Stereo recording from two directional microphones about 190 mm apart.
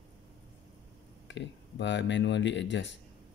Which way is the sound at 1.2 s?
70° left (ahead or behind).